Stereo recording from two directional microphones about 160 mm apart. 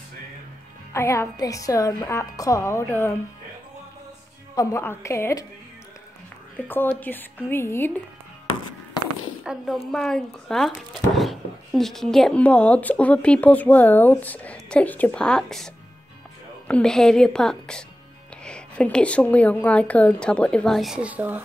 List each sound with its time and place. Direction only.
0.9 s speech: 15° left (ahead or behind)
4.6 s speech: 20° left (ahead or behind)
6.5 s speech: 10° left (ahead or behind)
9.4 s a woman's voice: 5° right (ahead or behind)